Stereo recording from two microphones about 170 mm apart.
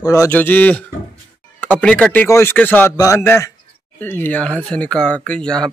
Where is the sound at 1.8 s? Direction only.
5° left (ahead or behind).